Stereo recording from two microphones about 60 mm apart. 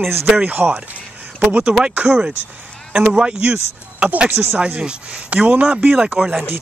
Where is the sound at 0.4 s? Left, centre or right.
Right.